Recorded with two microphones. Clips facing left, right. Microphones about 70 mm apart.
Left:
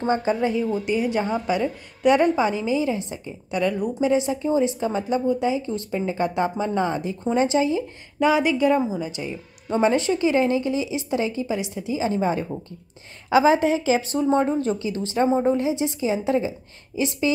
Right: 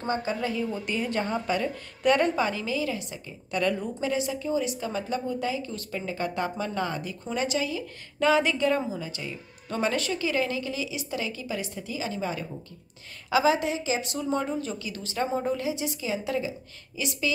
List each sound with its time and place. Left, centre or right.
0.0 s a woman's voice: left
8.2 s a woman's voice: centre; by 17.3 s left